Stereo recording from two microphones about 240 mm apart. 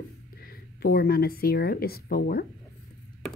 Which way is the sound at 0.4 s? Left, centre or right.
Left.